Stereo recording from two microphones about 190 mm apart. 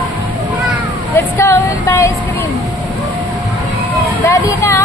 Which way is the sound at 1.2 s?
15° left (ahead or behind).